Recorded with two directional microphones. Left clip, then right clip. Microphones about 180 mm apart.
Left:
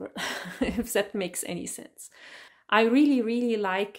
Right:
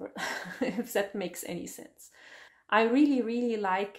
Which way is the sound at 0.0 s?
35° left (ahead or behind).